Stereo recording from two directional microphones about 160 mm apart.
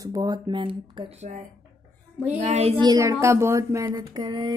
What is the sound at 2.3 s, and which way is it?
Speech, 45° right (ahead or behind).